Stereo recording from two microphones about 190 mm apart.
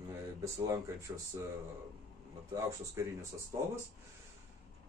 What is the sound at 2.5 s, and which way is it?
Speech, 15° right (ahead or behind).